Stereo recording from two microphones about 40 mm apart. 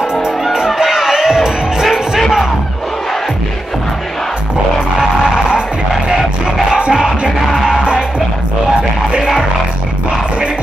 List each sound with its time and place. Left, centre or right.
0.5 s music: centre
6.7 s music: centre